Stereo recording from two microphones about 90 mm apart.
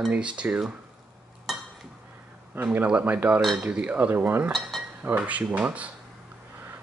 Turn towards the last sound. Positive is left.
turn(degrees=-15)  # may be behind; listen again after turning